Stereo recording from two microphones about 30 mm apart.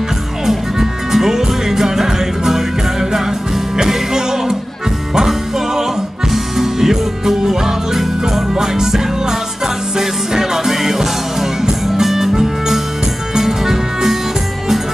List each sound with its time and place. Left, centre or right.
0.5 s music: centre
6.3 s music: centre